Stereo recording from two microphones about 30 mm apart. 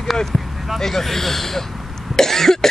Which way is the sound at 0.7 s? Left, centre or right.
Centre.